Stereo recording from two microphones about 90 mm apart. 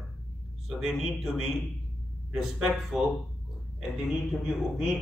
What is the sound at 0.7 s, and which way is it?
A man's voice, 5° right (ahead or behind).